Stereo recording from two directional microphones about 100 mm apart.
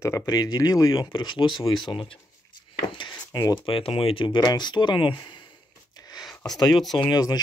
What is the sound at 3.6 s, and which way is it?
Speech, 65° left (ahead or behind).